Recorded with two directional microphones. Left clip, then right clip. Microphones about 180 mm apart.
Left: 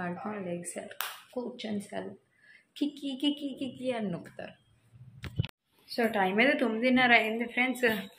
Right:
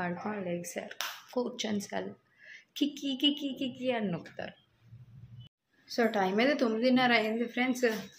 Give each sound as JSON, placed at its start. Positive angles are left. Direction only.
{"t": 0.0, "sound": "a woman's voice", "side_deg": -15}
{"t": 5.9, "sound": "a woman's voice", "side_deg": -10}